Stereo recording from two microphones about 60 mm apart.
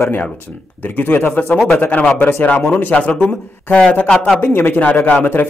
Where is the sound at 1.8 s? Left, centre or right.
Left.